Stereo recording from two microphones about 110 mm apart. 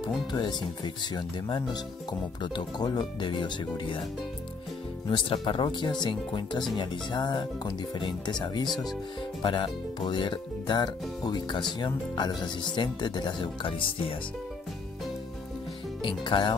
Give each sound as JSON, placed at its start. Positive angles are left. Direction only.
{"t": 0.3, "sound": "speech", "side_deg": 40}
{"t": 5.1, "sound": "speech", "side_deg": 50}
{"t": 16.0, "sound": "speech", "side_deg": 50}